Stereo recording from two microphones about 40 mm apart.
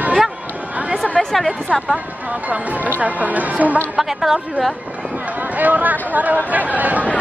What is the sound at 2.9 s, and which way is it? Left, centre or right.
Speech, right.